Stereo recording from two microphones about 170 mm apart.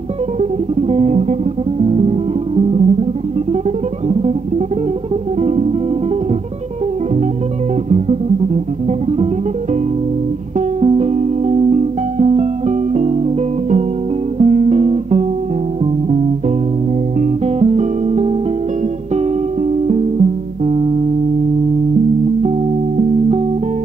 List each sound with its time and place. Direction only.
0.4 s music: 40° right (ahead or behind)
4.1 s music: 35° right (ahead or behind)
8.8 s music: 40° right (ahead or behind)
10.8 s music: 40° right (ahead or behind)